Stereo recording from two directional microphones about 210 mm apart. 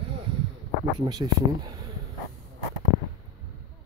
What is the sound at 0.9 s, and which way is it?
Speech, 20° right (ahead or behind).